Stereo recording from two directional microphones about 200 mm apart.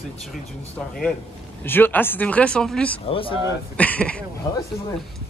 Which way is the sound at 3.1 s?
25° left (ahead or behind).